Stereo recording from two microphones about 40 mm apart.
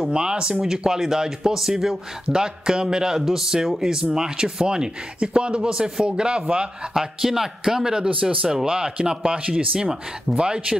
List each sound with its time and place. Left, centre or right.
0.1 s speech: right
2.2 s speech: centre
7.0 s speech: centre; by 10.8 s right